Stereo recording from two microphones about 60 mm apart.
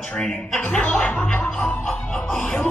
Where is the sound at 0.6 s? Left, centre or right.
Left.